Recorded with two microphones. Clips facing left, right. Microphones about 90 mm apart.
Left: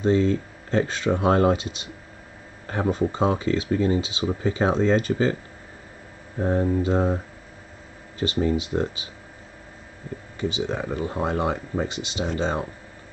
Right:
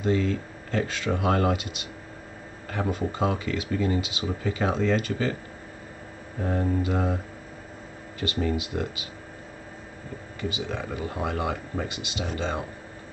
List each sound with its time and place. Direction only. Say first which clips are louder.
0.0 s speech: left 5 dB; 25° left (ahead or behind)
6.8 s speech: left 4 dB; 30° left (ahead or behind)
8.2 s speech: left 4 dB; 25° left (ahead or behind)
10.5 s speech: left 5 dB; 25° left (ahead or behind)